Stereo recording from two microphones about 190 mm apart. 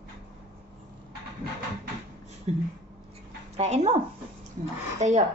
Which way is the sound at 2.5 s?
35° right (ahead or behind).